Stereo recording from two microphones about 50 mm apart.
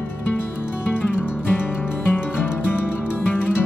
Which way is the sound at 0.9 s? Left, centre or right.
Left.